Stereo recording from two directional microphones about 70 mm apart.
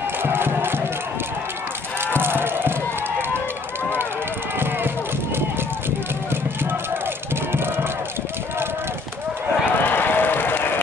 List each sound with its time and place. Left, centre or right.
0.2 s music: right
2.1 s music: right
9.8 s applause: left